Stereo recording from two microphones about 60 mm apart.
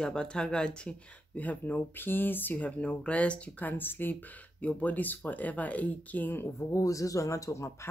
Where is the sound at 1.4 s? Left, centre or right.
Left.